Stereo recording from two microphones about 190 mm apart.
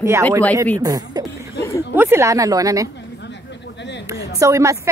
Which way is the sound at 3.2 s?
65° left (ahead or behind).